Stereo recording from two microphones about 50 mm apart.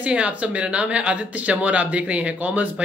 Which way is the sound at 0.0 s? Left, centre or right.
Right.